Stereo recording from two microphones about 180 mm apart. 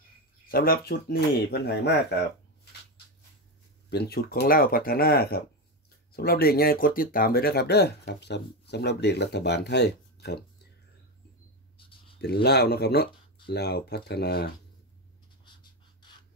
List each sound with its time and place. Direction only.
0.5 s speech: 55° left (ahead or behind)
3.9 s speech: 60° left (ahead or behind)
12.2 s speech: 65° left (ahead or behind)